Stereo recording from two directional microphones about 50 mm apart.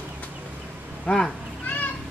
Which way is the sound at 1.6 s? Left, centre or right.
Left.